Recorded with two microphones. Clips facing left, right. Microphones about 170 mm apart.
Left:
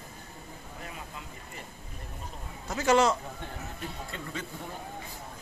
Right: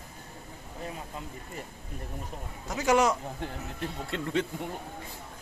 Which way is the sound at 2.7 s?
15° right (ahead or behind).